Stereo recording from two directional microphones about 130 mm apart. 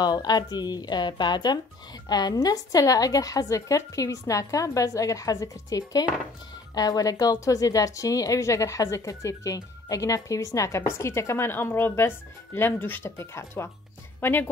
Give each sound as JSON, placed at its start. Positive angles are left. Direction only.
{"t": 0.0, "sound": "speech", "side_deg": 30}